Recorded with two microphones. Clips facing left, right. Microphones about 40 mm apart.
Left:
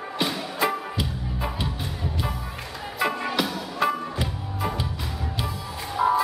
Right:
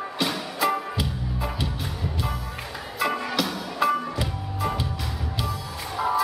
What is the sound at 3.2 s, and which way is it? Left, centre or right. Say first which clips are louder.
Music: left 1 dB; centre.